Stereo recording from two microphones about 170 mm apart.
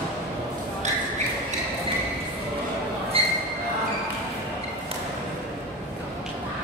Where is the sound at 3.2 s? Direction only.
35° right (ahead or behind).